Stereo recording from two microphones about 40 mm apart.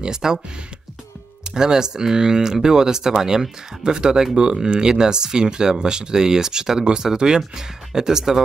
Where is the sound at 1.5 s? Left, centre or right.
Centre.